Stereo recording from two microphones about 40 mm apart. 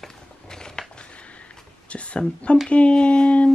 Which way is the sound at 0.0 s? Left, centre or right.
Centre.